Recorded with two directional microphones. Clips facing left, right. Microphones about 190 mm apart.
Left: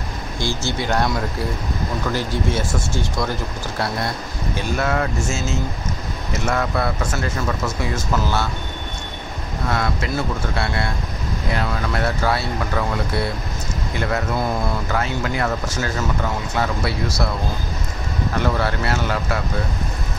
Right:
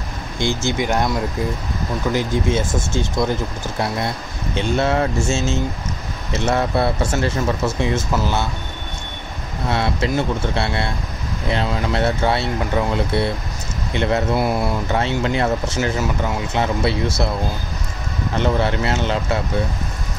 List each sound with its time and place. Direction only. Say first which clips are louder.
0.7 s speech: even; 15° right (ahead or behind)
2.1 s speech: right 5 dB; 20° right (ahead or behind)
4.6 s speech: right 4 dB; 25° right (ahead or behind)
9.7 s speech: right 3 dB; 25° right (ahead or behind)
14.3 s speech: right 3 dB; 10° right (ahead or behind)
14.9 s speech: right 3 dB; 25° right (ahead or behind)
18.4 s speech: right 4 dB; 20° right (ahead or behind)